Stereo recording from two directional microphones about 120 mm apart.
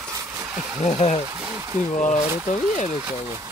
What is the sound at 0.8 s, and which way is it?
Speech, 60° left (ahead or behind).